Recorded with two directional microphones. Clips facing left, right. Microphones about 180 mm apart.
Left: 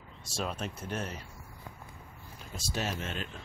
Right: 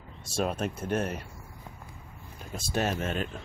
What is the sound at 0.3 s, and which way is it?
Speech, 55° right (ahead or behind).